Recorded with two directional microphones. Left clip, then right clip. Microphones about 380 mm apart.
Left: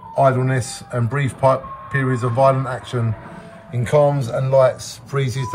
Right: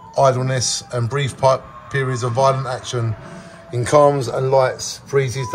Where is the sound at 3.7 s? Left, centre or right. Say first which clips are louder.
Right 3 dB; centre.